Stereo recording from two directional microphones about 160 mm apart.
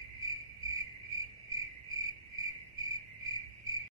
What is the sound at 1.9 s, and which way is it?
Cricket, 20° right (ahead or behind).